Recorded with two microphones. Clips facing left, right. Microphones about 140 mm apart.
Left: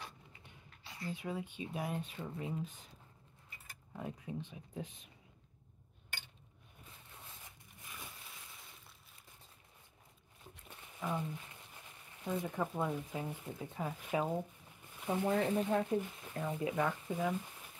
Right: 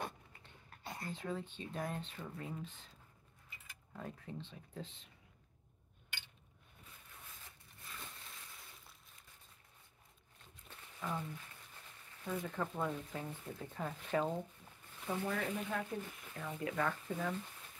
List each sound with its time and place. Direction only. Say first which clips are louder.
0.8 s whispering: left 1 dB; 50° right (ahead or behind)
1.1 s speech: left 2 dB; 10° left (ahead or behind)
3.9 s speech: left 4 dB; 15° left (ahead or behind)
6.0 s a sound: left 3 dB; 45° left (ahead or behind)
7.2 s a sound: left 2 dB; 15° left (ahead or behind)
10.7 s speech: left 3 dB; 15° left (ahead or behind)